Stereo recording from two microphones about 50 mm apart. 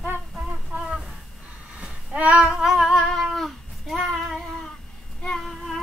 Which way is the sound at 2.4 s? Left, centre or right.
Centre.